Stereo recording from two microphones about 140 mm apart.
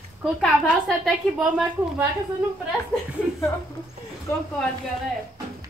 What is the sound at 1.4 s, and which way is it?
Speech, 10° right (ahead or behind).